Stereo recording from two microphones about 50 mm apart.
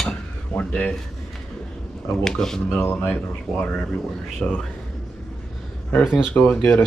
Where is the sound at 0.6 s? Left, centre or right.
Left.